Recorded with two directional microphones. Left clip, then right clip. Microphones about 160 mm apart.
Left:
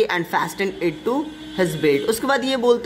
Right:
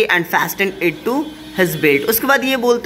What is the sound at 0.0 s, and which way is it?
Speech, centre (ahead or behind).